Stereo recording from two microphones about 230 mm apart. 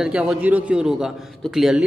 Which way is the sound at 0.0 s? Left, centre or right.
Centre.